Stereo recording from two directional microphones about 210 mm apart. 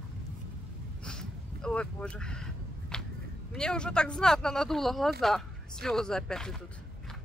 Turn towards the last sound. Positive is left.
turn(degrees=5)  # may be behind; listen again after turning